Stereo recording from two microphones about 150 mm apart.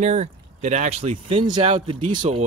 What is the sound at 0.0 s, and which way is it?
Speech, 50° right (ahead or behind).